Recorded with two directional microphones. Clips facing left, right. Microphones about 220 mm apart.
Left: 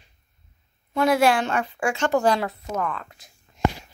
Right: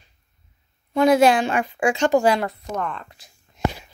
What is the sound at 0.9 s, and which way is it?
A woman's voice, 20° right (ahead or behind).